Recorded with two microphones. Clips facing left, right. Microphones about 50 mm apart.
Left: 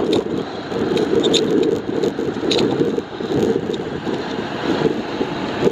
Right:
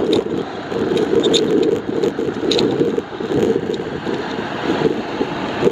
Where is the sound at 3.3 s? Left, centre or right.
Right.